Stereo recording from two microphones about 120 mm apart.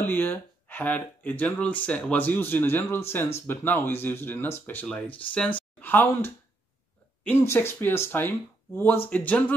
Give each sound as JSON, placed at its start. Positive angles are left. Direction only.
{"t": 0.0, "sound": "speech", "side_deg": 15}